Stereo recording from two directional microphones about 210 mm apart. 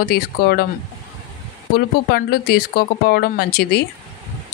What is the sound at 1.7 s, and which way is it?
Speech, 45° left (ahead or behind).